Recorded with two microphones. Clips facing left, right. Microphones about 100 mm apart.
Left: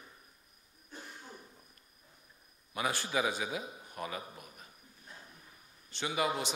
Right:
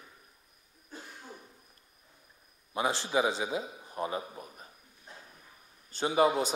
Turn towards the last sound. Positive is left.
turn(degrees=-35)  # may be behind; listen again after turning